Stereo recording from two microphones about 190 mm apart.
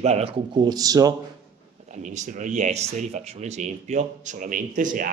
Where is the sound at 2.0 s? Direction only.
40° right (ahead or behind).